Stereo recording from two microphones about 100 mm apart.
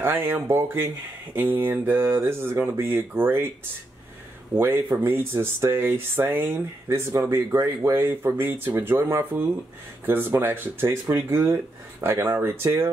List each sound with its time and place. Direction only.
0.0 s speech: 20° right (ahead or behind)
4.6 s speech: 25° right (ahead or behind)